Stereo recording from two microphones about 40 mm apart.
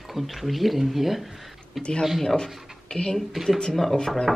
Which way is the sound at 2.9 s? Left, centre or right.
Centre.